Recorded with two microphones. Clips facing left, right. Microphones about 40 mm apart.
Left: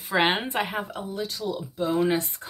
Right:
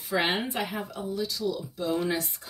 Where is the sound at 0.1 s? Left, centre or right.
Left.